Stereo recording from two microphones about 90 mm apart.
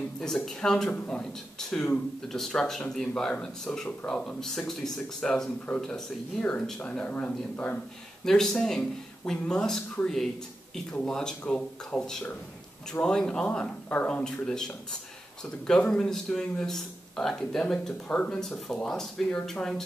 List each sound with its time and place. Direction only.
0.2 s speech: 5° left (ahead or behind)
0.8 s a man's voice: 15° left (ahead or behind)
1.2 s a man's voice: 5° left (ahead or behind)
8.3 s a man's voice: 5° left (ahead or behind)